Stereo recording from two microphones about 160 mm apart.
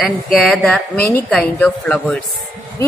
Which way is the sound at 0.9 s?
15° left (ahead or behind).